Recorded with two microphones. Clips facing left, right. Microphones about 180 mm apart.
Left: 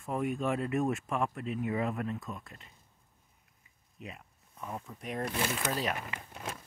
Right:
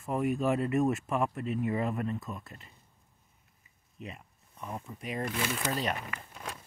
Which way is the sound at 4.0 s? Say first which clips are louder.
Right 2 dB; centre (ahead or behind).